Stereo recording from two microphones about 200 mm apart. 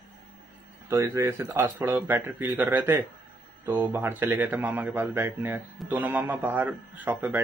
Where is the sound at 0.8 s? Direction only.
15° right (ahead or behind).